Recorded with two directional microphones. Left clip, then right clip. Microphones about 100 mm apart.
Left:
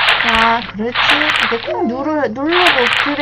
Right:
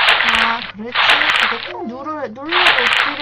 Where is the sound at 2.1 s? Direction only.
35° left (ahead or behind).